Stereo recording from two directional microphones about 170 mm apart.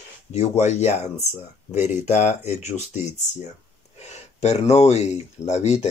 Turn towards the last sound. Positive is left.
turn(degrees=40)  # may be behind; listen again after turning